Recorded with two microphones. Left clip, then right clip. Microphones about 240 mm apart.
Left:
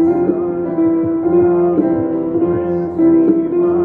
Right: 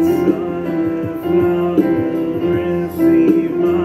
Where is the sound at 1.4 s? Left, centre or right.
Right.